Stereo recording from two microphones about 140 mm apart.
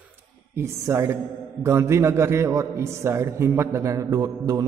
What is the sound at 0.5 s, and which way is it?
A man's voice, 20° right (ahead or behind).